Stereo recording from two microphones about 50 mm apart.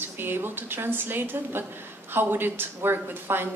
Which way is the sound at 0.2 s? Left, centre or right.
Right.